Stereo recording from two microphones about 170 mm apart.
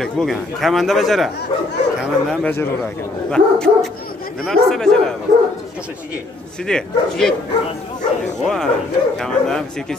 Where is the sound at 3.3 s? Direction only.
5° left (ahead or behind).